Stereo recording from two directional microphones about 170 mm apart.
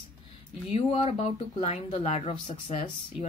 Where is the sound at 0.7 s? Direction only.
35° left (ahead or behind).